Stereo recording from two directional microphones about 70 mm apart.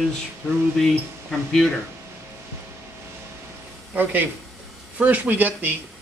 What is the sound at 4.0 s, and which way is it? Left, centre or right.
Speech, right.